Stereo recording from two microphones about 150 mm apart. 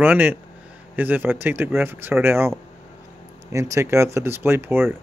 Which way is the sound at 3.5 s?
20° right (ahead or behind).